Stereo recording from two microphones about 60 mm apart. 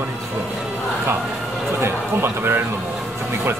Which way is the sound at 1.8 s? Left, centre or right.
Right.